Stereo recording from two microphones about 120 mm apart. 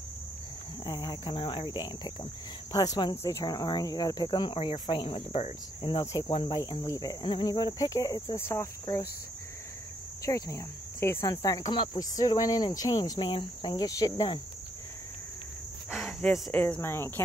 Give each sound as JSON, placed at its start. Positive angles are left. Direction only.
{"t": 0.8, "sound": "speech", "side_deg": 35}
{"t": 6.8, "sound": "speech", "side_deg": 30}
{"t": 10.2, "sound": "cricket", "side_deg": 25}
{"t": 11.7, "sound": "speech", "side_deg": 40}
{"t": 13.2, "sound": "speech", "side_deg": 45}
{"t": 15.9, "sound": "speech", "side_deg": 5}